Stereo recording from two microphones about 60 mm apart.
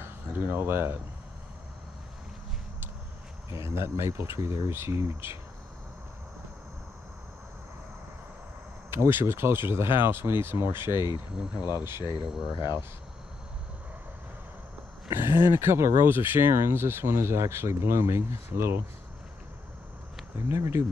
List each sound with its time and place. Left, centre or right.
0.0 s speech: right
3.4 s speech: right
8.9 s speech: right
12.3 s speech: centre
15.1 s speech: right
20.4 s speech: right